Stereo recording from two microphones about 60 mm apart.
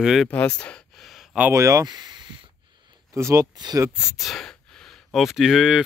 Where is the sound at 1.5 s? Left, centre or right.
Right.